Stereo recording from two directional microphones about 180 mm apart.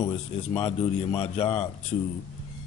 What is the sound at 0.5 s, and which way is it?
A man's voice, 30° left (ahead or behind).